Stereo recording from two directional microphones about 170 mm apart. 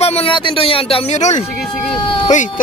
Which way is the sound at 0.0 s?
35° left (ahead or behind).